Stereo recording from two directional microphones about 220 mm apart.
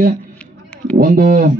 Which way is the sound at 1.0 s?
40° right (ahead or behind).